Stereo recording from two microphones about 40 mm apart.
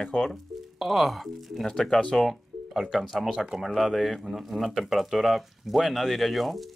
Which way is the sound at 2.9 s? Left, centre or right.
Centre.